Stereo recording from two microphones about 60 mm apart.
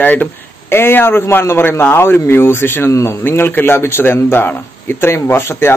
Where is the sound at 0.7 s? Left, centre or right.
Left.